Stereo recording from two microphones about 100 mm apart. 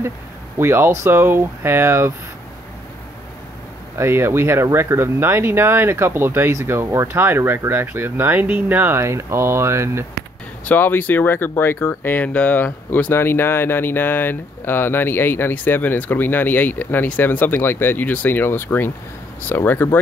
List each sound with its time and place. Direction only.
0.6 s speech: 25° right (ahead or behind)
4.0 s speech: 25° right (ahead or behind)
10.6 s speech: 20° left (ahead or behind)